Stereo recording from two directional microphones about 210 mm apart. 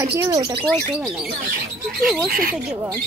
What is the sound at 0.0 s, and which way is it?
Speech, 15° right (ahead or behind).